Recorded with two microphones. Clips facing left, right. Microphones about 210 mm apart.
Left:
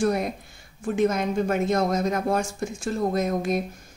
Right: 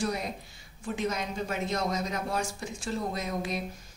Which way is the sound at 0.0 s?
55° left (ahead or behind).